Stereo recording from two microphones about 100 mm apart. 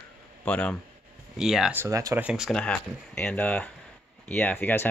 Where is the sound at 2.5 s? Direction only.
10° left (ahead or behind).